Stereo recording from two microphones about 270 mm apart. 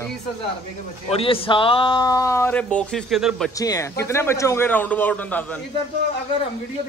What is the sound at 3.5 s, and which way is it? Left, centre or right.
A man's voice, centre.